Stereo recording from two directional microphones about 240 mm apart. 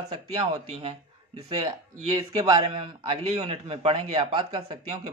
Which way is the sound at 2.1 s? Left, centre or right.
Centre.